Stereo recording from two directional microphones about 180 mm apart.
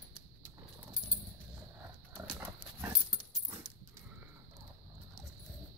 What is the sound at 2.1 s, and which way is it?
Horse, 5° right (ahead or behind).